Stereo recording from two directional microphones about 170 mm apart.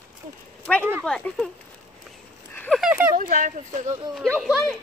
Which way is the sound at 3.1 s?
50° right (ahead or behind).